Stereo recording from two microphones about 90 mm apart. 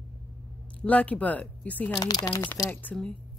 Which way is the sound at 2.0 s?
45° left (ahead or behind).